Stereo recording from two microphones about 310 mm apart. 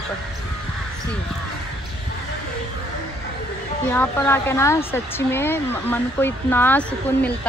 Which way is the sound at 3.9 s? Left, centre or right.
Centre.